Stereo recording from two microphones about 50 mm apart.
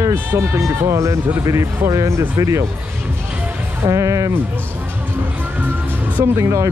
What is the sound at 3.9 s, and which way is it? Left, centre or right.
Speech, right.